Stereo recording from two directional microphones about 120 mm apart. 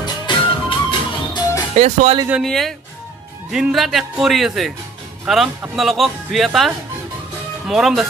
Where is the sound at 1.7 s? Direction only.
70° right (ahead or behind).